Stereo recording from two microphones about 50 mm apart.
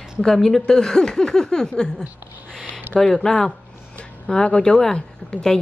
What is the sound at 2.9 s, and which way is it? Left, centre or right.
A woman's voice, centre.